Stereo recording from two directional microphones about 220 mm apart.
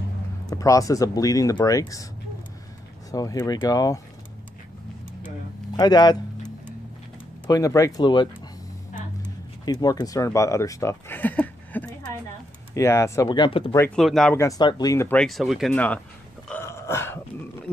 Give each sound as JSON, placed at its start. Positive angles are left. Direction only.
{"t": 0.5, "sound": "speech", "side_deg": 15}
{"t": 3.1, "sound": "speech", "side_deg": 15}
{"t": 5.8, "sound": "speech", "side_deg": 20}
{"t": 7.4, "sound": "speech", "side_deg": 15}
{"t": 9.7, "sound": "speech", "side_deg": 15}
{"t": 13.7, "sound": "speech", "side_deg": 5}
{"t": 16.4, "sound": "a sound", "side_deg": 10}